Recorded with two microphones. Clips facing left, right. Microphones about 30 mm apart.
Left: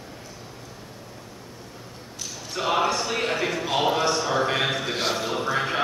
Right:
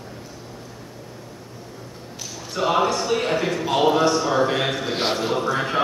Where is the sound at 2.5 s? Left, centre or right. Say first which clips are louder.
Right 3 dB; centre.